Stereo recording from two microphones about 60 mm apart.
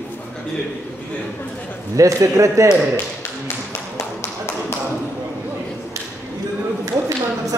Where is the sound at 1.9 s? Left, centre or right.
Right.